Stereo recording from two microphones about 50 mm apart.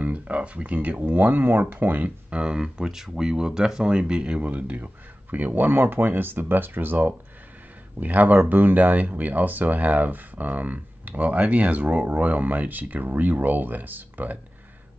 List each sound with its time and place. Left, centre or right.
0.0 s speech: right
2.0 s speech: right
4.4 s speech: right